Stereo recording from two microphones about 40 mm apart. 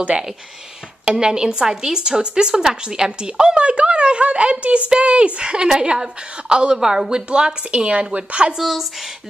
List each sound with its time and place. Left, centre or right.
1.0 s speech: centre
8.5 s speech: centre